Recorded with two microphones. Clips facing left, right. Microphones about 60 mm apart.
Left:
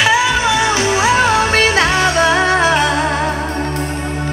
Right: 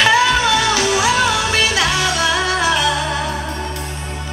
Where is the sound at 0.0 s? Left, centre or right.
Centre; by 2.9 s left.